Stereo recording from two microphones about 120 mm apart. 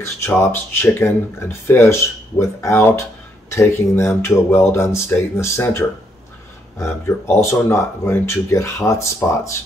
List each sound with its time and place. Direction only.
0.0 s speech: 20° left (ahead or behind)